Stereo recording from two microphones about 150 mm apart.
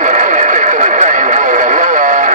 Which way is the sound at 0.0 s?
55° right (ahead or behind).